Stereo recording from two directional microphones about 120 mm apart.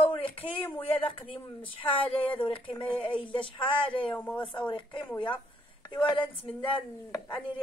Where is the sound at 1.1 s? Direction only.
45° left (ahead or behind).